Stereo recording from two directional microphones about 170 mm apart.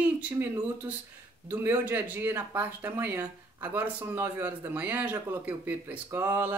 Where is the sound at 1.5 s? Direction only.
10° right (ahead or behind).